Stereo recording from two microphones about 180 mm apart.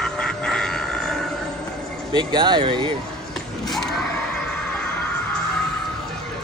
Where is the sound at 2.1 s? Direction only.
25° right (ahead or behind).